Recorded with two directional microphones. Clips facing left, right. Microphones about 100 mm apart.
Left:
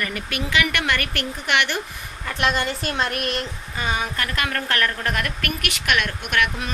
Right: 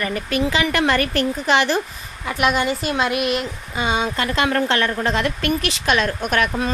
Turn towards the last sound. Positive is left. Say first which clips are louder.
# right 4 dB
turn(degrees=-35)  # may be behind; listen again after turning